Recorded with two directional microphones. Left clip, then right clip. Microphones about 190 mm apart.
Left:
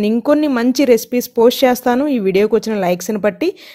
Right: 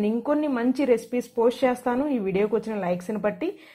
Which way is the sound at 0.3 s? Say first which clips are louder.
Left 11 dB; 50° left (ahead or behind).